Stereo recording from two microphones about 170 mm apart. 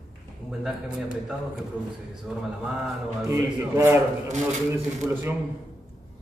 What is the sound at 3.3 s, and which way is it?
Speech, 15° right (ahead or behind).